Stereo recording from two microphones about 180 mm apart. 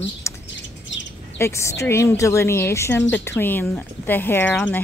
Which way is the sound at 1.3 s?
15° left (ahead or behind).